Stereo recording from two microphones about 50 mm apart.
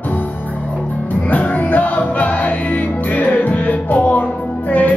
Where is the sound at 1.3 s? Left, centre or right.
Left.